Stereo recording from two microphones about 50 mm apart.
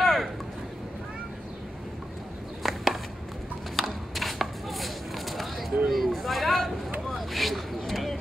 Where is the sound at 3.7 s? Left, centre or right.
Centre.